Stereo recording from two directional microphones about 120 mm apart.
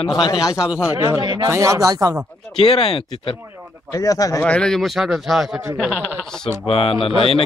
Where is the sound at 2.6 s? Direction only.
50° left (ahead or behind).